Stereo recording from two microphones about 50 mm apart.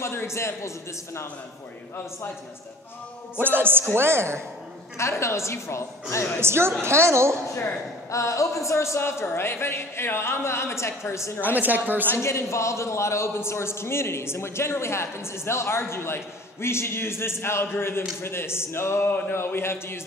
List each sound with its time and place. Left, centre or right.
0.0 s a man's voice: left
3.3 s a woman's voice: right
3.9 s a woman's voice: right
4.9 s a woman's voice: left
6.4 s a woman's voice: right
8.1 s speech: left
9.3 s a man's voice: left
11.4 s a woman's voice: right
12.2 s a man's voice: left